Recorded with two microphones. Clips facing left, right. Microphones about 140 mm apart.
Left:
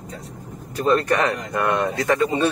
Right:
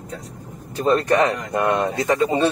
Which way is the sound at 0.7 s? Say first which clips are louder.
Right 1 dB; 30° right (ahead or behind).